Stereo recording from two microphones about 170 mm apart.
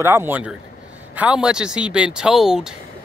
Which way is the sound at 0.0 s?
15° right (ahead or behind).